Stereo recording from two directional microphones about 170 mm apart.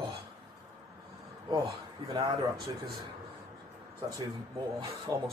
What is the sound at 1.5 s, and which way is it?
Speech, 25° right (ahead or behind).